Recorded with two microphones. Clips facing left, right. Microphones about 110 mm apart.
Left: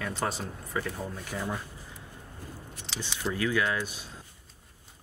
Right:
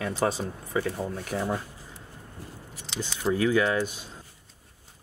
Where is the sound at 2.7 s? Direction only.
5° right (ahead or behind).